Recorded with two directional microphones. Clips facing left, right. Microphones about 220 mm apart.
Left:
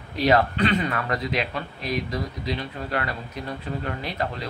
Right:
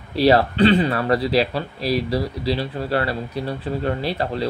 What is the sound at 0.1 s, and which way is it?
Speech, 35° right (ahead or behind).